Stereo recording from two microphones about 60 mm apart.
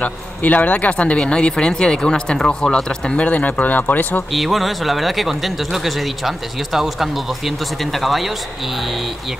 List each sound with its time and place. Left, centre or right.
0.0 s speech: left
4.3 s speech: centre